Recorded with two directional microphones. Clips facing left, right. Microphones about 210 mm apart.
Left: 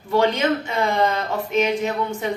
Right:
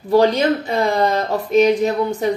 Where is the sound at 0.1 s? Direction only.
35° right (ahead or behind).